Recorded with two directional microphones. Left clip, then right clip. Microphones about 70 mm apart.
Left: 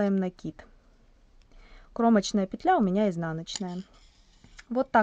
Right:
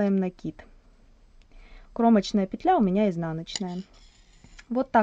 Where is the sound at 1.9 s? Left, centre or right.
Left.